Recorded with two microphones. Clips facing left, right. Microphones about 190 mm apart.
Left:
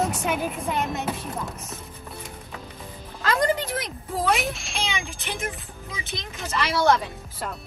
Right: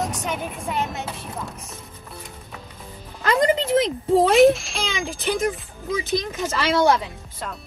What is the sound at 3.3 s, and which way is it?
Music, 20° right (ahead or behind).